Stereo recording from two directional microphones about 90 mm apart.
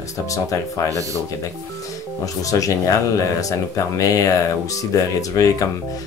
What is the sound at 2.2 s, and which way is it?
Speech, 40° left (ahead or behind).